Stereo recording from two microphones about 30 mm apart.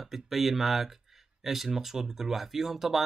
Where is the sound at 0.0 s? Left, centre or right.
Centre.